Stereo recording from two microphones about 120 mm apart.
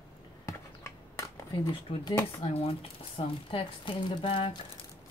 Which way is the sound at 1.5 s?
45° left (ahead or behind).